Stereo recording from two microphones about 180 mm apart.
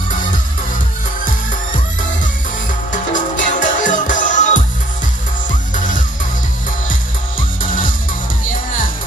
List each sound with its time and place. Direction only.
2.9 s music: 45° left (ahead or behind)